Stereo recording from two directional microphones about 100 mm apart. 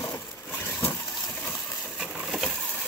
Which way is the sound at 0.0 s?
20° left (ahead or behind).